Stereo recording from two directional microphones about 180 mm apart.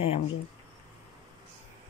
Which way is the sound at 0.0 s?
35° left (ahead or behind).